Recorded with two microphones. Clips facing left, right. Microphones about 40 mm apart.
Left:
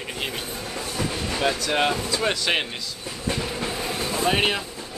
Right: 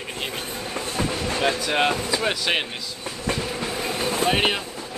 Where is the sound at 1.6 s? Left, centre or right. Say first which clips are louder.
Right 1 dB; centre.